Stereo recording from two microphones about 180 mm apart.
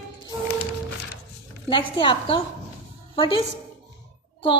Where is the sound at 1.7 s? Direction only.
30° left (ahead or behind).